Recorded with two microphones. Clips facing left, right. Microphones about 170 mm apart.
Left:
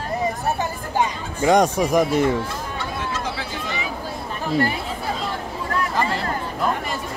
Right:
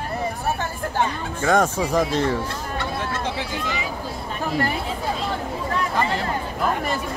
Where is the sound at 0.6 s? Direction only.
15° left (ahead or behind).